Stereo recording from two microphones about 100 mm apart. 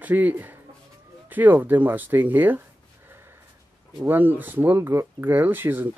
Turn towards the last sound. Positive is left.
turn(degrees=-20)  # may be behind; listen again after turning